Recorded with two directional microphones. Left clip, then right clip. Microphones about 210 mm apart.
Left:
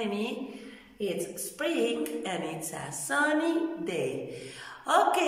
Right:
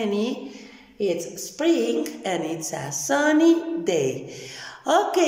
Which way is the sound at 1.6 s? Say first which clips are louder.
Right 7 dB; 25° right (ahead or behind).